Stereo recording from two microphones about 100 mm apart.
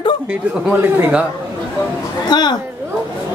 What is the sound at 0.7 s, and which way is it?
Speech, 15° right (ahead or behind).